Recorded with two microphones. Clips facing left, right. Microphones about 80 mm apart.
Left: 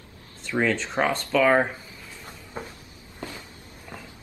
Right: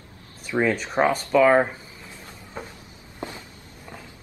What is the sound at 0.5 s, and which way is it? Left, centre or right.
Speech, centre.